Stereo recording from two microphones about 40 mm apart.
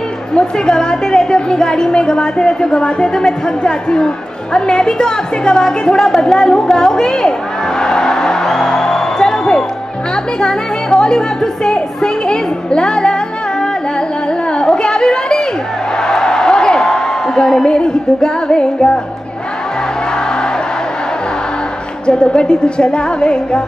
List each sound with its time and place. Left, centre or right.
0.3 s a woman's voice: centre
7.8 s music: centre
10.4 s a woman's voice: centre
14.6 s chatter: centre
16.0 s a sound: centre
22.0 s a woman's voice: left